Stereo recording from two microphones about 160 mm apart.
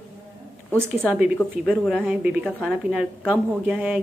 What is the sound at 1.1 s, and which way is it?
A woman's voice, 5° right (ahead or behind).